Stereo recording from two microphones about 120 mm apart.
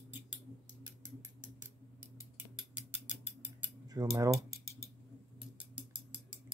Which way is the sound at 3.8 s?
30° right (ahead or behind).